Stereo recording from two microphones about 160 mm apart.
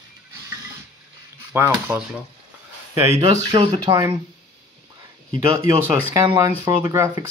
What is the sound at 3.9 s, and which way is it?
Speech, 20° right (ahead or behind).